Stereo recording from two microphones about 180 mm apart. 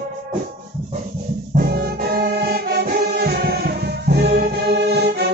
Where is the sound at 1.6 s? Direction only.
60° right (ahead or behind).